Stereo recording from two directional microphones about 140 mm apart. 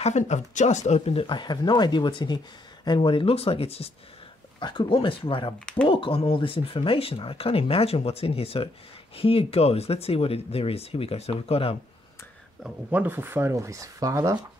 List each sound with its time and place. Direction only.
0.0 s speech: 55° left (ahead or behind)
4.6 s speech: 35° left (ahead or behind)
12.6 s speech: 10° right (ahead or behind)